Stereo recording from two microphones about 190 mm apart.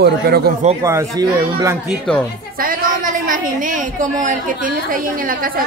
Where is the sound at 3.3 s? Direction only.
45° right (ahead or behind).